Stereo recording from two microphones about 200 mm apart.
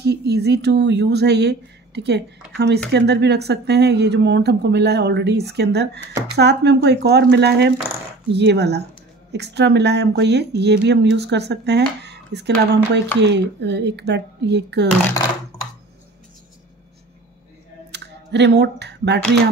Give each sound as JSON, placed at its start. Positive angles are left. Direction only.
{"t": 0.0, "sound": "speech", "side_deg": -55}
{"t": 17.9, "sound": "speech", "side_deg": -60}